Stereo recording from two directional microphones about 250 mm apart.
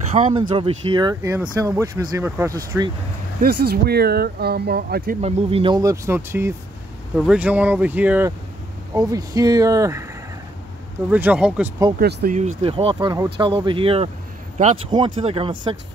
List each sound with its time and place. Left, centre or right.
0.1 s speech: right; by 2.9 s centre
3.4 s speech: right
5.2 s speech: right
11.1 s speech: centre
12.0 s speech: right
12.6 s speech: right